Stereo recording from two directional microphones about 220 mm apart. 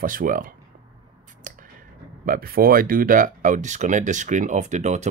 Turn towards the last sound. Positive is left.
turn(degrees=-30)  # may be behind; listen again after turning